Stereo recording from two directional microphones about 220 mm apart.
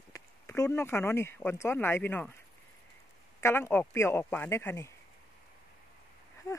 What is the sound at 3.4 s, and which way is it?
Speech, 10° left (ahead or behind).